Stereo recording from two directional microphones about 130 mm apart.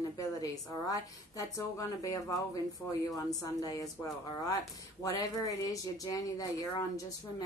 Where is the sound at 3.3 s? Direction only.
30° left (ahead or behind).